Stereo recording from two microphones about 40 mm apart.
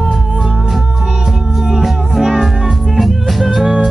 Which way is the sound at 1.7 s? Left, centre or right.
Centre.